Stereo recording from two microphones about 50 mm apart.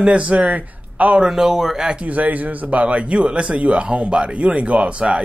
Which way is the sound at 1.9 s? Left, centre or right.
Right.